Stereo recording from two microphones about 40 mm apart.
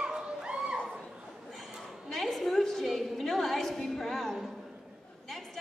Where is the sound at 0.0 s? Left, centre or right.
Right.